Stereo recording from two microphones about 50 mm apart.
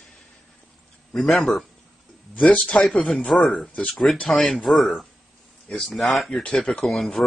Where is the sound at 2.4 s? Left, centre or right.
Centre.